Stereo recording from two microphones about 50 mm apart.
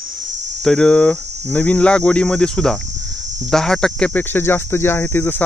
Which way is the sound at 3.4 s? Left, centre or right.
Centre.